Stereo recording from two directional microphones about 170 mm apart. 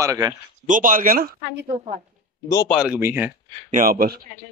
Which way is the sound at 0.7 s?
50° right (ahead or behind).